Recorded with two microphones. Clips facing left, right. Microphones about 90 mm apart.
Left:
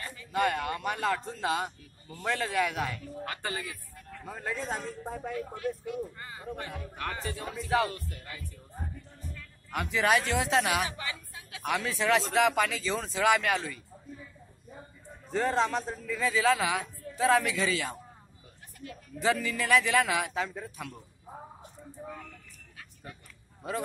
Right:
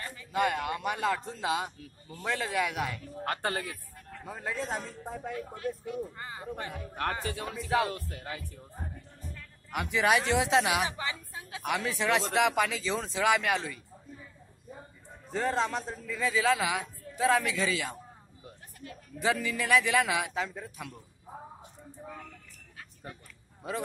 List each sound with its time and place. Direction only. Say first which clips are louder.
0.3 s speech: even; 10° right (ahead or behind)
3.3 s speech: right 5 dB; 50° right (ahead or behind)
4.2 s a man's voice: even; 5° right (ahead or behind)
5.6 s speech: right 1 dB; 30° right (ahead or behind)
7.0 s a man's voice: right 4 dB; 55° right (ahead or behind)
7.9 s speech: right 3 dB; 90° right
9.7 s speech: even; 10° right (ahead or behind)
10.9 s speech: right 2 dB; 30° right (ahead or behind)
11.6 s speech: left 1 dB; 10° right (ahead or behind)
15.3 s a man's voice: left 2 dB; centre (ahead or behind)
19.2 s a man's voice: left 1 dB; 10° right (ahead or behind)